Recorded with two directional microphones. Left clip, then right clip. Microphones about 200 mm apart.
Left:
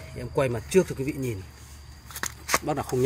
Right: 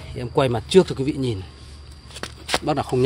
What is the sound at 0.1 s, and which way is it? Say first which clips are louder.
Speech: right 6 dB; 10° right (ahead or behind).